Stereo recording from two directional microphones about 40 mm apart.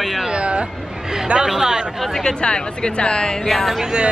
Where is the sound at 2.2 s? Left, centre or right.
Left.